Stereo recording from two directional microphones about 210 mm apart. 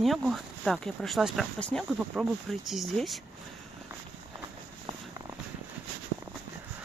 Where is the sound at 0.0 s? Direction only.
Centre (ahead or behind).